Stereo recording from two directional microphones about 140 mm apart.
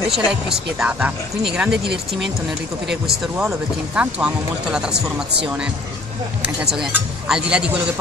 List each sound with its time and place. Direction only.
0.1 s speech: 5° right (ahead or behind)
3.3 s speech: 10° right (ahead or behind)
6.4 s speech: 5° right (ahead or behind)